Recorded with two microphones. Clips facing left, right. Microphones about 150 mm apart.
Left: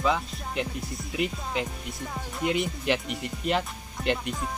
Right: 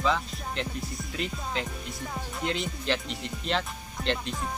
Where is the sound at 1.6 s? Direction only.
15° left (ahead or behind).